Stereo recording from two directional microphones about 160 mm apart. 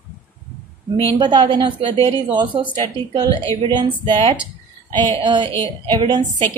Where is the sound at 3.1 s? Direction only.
30° right (ahead or behind).